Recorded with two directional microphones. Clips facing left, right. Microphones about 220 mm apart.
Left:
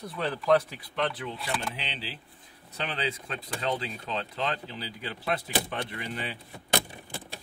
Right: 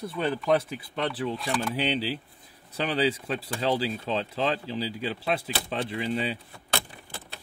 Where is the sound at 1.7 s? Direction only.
35° right (ahead or behind).